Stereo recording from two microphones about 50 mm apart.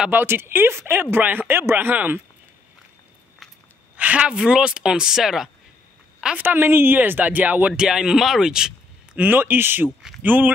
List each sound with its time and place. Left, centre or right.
0.1 s speech: right
1.2 s speech: right
3.9 s a sound: right
4.2 s speech: centre
6.3 s speech: right
7.0 s speech: right
7.7 s speech: centre
9.2 s speech: right